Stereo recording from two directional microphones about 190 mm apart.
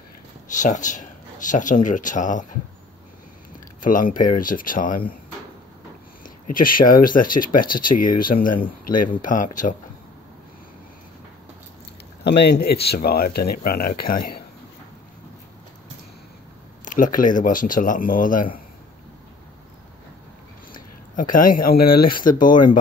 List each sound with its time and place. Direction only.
0.5 s speech: 40° left (ahead or behind)
3.8 s speech: 45° left (ahead or behind)
6.2 s speech: 45° left (ahead or behind)
12.2 s speech: 65° left (ahead or behind)
16.8 s speech: 45° left (ahead or behind)
20.7 s speech: 45° left (ahead or behind)